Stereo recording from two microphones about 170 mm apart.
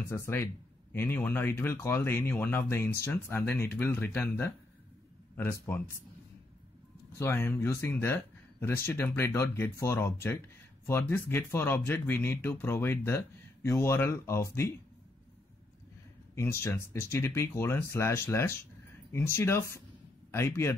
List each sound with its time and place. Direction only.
0.1 s speech: 15° left (ahead or behind)
7.2 s speech: 15° left (ahead or behind)
16.3 s a man's voice: 15° left (ahead or behind)